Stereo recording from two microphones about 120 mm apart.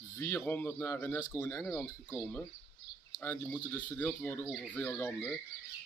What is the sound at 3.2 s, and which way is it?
Speech, 15° left (ahead or behind).